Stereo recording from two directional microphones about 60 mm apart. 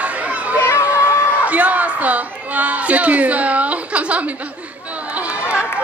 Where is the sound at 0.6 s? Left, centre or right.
Left.